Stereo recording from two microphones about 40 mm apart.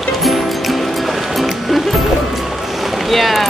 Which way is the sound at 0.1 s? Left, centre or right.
Centre.